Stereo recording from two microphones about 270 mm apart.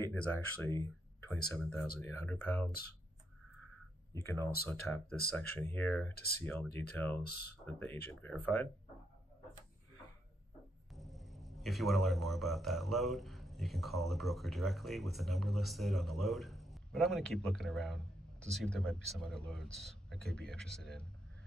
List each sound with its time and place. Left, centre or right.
0.0 s a man's voice: centre
4.6 s speech: centre
6.1 s speech: left
6.4 s speech: centre
11.0 s a man's voice: centre